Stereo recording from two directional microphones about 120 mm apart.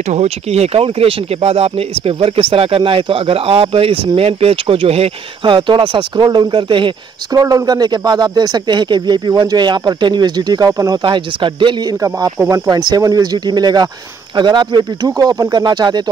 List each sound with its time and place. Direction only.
0.1 s speech: 65° right (ahead or behind); by 6.9 s 40° right (ahead or behind)
7.3 s a man's voice: 30° right (ahead or behind)